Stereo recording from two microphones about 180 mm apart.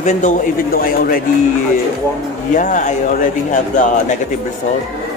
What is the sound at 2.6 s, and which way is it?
A man's voice, 45° left (ahead or behind).